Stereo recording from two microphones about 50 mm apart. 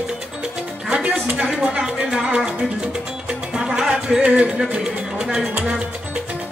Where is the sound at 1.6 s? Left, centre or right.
Centre.